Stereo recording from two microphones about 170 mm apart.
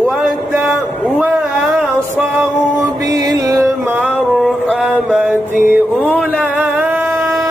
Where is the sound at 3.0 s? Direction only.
20° right (ahead or behind).